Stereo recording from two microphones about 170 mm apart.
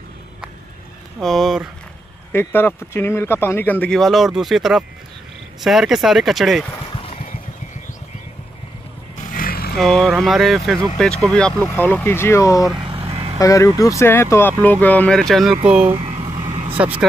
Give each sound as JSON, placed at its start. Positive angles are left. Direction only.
{"t": 1.2, "sound": "speech", "side_deg": 0}
{"t": 2.3, "sound": "speech", "side_deg": 15}
{"t": 9.2, "sound": "music", "side_deg": 55}
{"t": 9.8, "sound": "speech", "side_deg": 0}
{"t": 12.7, "sound": "vehicle", "side_deg": -30}
{"t": 13.4, "sound": "speech", "side_deg": 20}
{"t": 15.9, "sound": "vehicle", "side_deg": -30}
{"t": 16.4, "sound": "vehicle", "side_deg": -40}